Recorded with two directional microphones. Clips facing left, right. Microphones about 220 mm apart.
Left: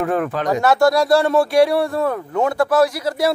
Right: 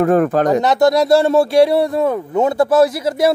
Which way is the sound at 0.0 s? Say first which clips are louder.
Right 7 dB; 40° right (ahead or behind).